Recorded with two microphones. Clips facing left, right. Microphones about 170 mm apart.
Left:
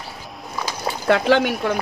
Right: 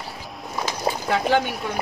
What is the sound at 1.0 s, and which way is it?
Speech, 75° left (ahead or behind).